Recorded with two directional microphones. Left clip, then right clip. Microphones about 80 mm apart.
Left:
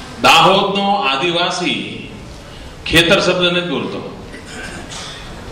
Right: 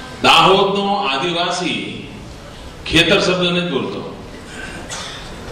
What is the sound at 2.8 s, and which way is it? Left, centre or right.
Speech, left.